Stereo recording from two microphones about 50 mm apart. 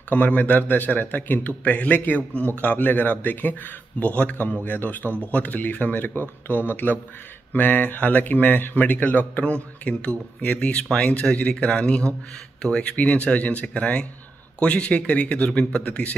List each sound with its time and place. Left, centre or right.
0.1 s a man's voice: left
1.6 s a man's voice: left